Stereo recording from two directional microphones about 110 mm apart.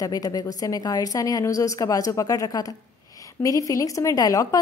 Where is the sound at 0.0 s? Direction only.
35° left (ahead or behind).